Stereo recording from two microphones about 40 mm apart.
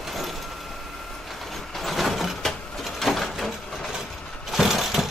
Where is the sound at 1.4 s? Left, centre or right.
Centre.